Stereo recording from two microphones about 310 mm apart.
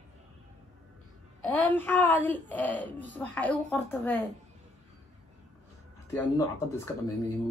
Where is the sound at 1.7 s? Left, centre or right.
Centre.